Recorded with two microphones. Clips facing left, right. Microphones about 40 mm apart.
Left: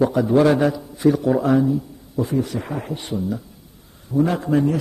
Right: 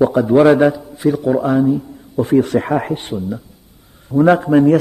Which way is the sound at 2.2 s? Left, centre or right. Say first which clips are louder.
Right 10 dB; right.